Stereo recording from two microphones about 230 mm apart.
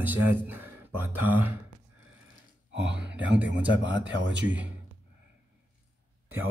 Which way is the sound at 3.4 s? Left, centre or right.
Right.